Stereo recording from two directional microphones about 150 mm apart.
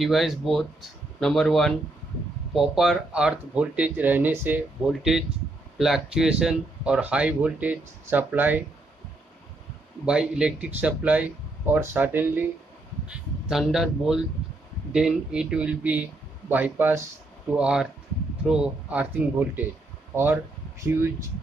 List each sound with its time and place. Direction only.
0.0 s speech: centre (ahead or behind)
10.0 s speech: 5° right (ahead or behind)